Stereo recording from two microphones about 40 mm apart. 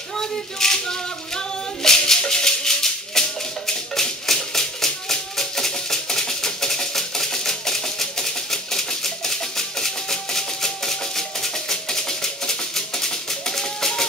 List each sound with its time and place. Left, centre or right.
0.2 s music: centre